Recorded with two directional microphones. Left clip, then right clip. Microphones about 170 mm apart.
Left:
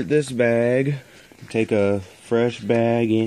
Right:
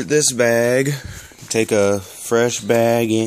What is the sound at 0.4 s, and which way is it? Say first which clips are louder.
Speech: right 3 dB; 15° right (ahead or behind).